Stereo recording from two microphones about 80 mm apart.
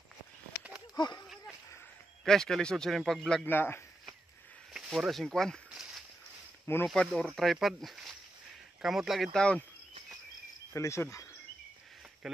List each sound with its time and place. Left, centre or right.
0.9 s speech: left
2.2 s speech: centre
3.4 s speech: left
4.7 s speech: centre
5.7 s walk: centre
6.7 s speech: left
7.2 s speech: centre
9.4 s cricket: centre
10.7 s cricket: left